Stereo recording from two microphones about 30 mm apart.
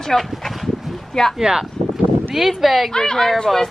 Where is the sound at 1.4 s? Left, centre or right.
Right.